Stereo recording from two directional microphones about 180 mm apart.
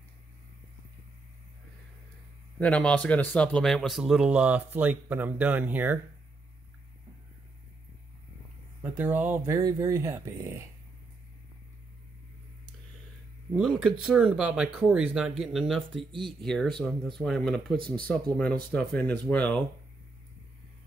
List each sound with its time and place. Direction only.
2.6 s speech: 5° left (ahead or behind); by 5.9 s 10° right (ahead or behind)
8.8 s speech: 10° right (ahead or behind)
13.6 s speech: centre (ahead or behind)
16.0 s speech: 30° right (ahead or behind)
16.4 s speech: centre (ahead or behind)